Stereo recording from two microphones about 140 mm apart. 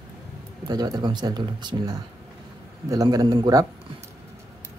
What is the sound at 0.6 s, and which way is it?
A man's voice, 30° right (ahead or behind).